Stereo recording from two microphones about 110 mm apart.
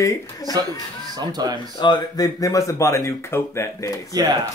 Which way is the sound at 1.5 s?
40° left (ahead or behind).